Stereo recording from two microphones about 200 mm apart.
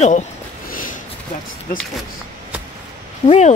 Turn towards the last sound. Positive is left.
turn(degrees=20)  # may be behind; listen again after turning